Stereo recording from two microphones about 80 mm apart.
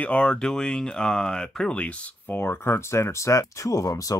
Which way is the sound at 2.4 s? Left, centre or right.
Left.